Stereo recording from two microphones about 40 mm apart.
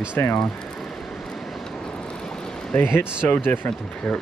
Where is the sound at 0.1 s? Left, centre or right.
Left.